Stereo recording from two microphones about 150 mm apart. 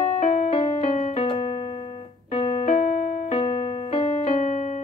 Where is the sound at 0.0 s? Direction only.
50° left (ahead or behind).